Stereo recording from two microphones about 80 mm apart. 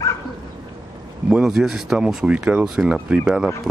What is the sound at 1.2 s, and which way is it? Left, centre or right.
Speech, centre.